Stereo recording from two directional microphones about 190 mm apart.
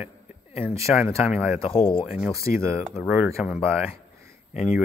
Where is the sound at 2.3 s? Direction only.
15° right (ahead or behind).